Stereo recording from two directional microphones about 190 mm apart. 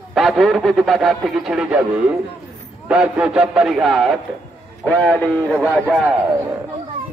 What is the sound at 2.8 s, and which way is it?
A man's voice, 5° right (ahead or behind).